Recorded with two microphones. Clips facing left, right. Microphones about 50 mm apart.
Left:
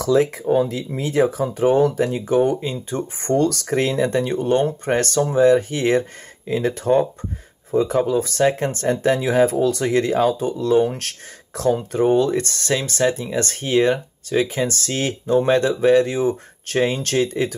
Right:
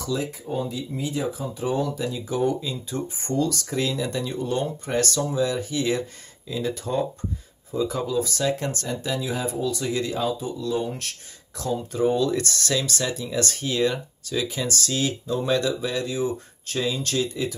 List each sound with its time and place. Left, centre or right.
0.0 s speech: left
8.8 s speech: left